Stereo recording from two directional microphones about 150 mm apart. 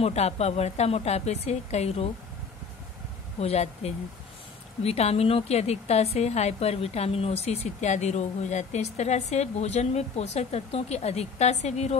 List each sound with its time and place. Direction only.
0.0 s a woman's voice: 45° left (ahead or behind)
3.3 s a woman's voice: 45° left (ahead or behind)